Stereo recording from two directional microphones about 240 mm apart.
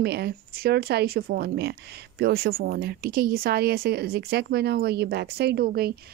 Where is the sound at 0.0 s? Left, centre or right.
Right.